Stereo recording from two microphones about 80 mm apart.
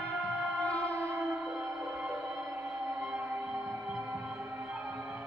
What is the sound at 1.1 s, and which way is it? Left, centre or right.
Music, right.